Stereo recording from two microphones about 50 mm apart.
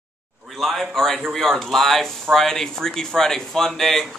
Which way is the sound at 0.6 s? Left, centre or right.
Centre.